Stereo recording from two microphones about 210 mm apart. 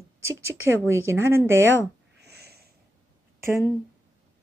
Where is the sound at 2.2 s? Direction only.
50° right (ahead or behind).